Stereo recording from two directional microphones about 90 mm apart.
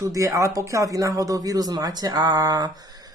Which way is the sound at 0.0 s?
35° right (ahead or behind).